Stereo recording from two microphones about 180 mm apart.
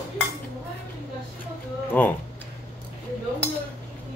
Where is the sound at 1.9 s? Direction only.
10° left (ahead or behind).